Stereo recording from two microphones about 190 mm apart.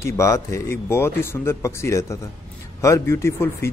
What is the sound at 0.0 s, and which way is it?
Speech, 15° left (ahead or behind).